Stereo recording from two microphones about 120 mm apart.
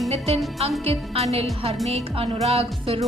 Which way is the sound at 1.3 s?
55° right (ahead or behind).